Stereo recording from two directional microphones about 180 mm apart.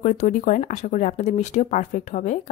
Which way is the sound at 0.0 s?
45° left (ahead or behind).